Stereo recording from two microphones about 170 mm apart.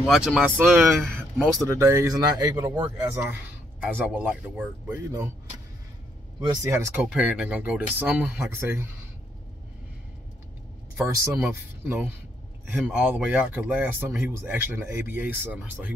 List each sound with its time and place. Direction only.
0.0 s speech: centre (ahead or behind)
6.4 s speech: 20° right (ahead or behind)
7.0 s speech: 5° right (ahead or behind)
11.4 s speech: 10° right (ahead or behind)